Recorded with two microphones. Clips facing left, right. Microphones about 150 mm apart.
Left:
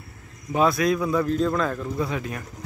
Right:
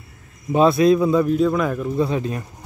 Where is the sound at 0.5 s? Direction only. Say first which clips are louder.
Right 6 dB; 25° right (ahead or behind).